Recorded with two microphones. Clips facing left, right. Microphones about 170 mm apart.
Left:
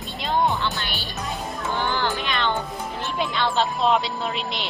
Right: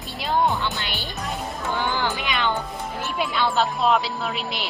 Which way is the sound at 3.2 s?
5° right (ahead or behind).